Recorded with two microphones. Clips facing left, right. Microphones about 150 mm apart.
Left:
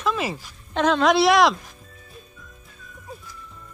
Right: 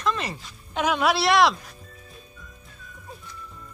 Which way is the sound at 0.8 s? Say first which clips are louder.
Left 5 dB; 10° right (ahead or behind).